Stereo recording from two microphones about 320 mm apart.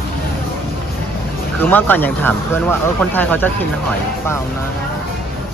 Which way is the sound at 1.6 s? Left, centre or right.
Centre.